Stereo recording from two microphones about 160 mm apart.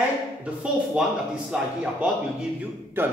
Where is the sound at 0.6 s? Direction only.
5° right (ahead or behind).